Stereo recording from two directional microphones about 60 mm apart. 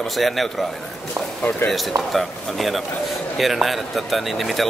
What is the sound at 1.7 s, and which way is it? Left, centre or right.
A man's voice, centre.